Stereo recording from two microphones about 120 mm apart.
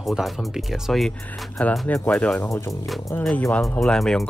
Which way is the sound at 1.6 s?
10° left (ahead or behind).